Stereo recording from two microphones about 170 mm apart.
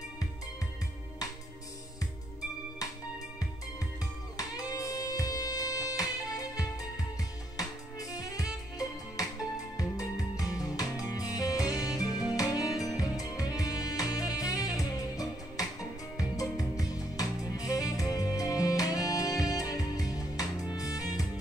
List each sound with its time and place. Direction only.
4.4 s music: 20° left (ahead or behind)